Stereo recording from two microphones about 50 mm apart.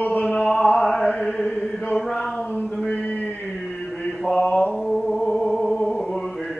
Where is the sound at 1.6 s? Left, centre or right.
Centre.